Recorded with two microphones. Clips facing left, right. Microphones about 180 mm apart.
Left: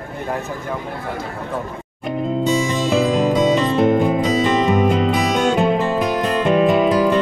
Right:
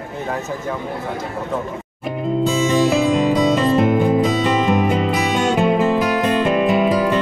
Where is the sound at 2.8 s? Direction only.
5° right (ahead or behind).